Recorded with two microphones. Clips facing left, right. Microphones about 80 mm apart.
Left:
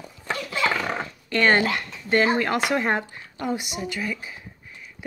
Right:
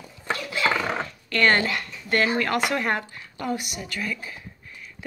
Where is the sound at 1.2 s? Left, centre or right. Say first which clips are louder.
Left 1 dB; centre.